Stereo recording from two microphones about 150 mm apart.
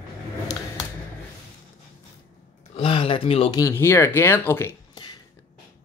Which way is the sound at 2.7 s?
40° left (ahead or behind).